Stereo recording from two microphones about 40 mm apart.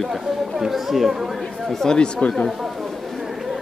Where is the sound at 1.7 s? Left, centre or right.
Centre.